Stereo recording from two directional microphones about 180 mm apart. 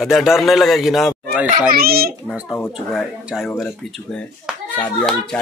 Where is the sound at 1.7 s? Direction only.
55° right (ahead or behind).